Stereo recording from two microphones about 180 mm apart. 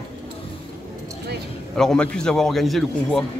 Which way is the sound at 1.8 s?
5° left (ahead or behind).